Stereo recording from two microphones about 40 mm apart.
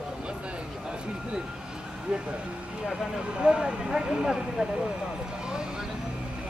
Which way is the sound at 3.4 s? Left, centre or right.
Right.